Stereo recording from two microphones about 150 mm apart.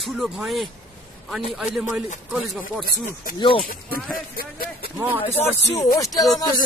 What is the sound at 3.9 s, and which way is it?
Speech, 75° left (ahead or behind).